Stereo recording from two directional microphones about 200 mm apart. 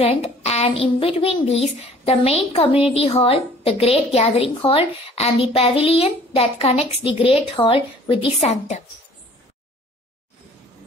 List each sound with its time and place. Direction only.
0.0 s a child's voice: 30° left (ahead or behind)